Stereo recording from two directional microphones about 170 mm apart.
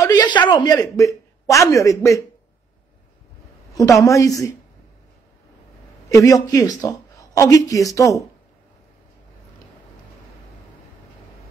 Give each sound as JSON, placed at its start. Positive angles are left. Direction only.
{"t": 0.0, "sound": "a sound", "side_deg": 25}
{"t": 0.5, "sound": "a man's voice", "side_deg": 25}
{"t": 3.7, "sound": "a man's voice", "side_deg": 20}
{"t": 6.0, "sound": "a man's voice", "side_deg": 20}